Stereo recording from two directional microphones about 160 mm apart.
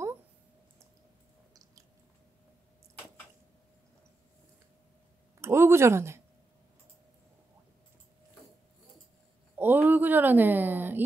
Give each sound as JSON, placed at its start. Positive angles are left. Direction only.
{"t": 1.5, "sound": "chewing", "side_deg": -20}
{"t": 5.4, "sound": "speech", "side_deg": -15}
{"t": 9.6, "sound": "a sound", "side_deg": -10}